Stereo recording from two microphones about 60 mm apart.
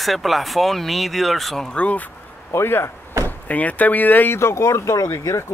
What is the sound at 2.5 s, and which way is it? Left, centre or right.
Speech, left.